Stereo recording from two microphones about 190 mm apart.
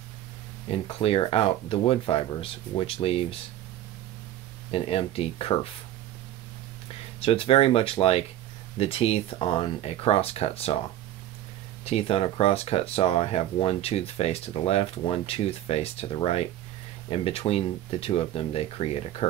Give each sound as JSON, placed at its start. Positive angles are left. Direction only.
{"t": 0.7, "sound": "speech", "side_deg": 30}
{"t": 4.6, "sound": "speech", "side_deg": 30}
{"t": 7.2, "sound": "speech", "side_deg": 30}
{"t": 11.8, "sound": "speech", "side_deg": 30}